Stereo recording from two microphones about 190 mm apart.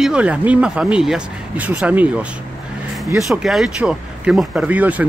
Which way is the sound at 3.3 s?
Centre (ahead or behind).